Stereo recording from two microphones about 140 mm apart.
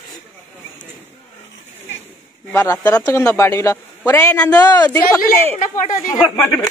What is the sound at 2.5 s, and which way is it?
Speech, 20° left (ahead or behind).